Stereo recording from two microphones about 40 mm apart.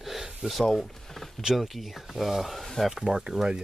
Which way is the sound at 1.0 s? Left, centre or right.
Centre.